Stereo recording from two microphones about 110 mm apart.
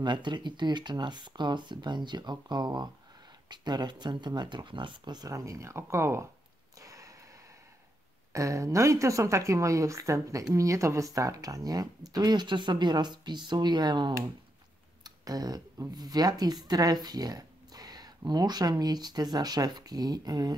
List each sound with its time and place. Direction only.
0.0 s speech: 45° right (ahead or behind); by 6.2 s 25° right (ahead or behind)
6.8 s a sound: 30° right (ahead or behind)
8.3 s a woman's voice: 30° right (ahead or behind)